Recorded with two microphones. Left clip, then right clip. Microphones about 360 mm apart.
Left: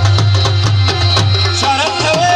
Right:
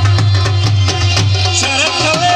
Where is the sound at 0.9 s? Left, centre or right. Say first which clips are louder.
Left 2 dB; centre.